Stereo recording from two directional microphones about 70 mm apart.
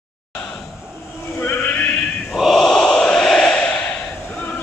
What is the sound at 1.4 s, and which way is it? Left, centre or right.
Chant, left.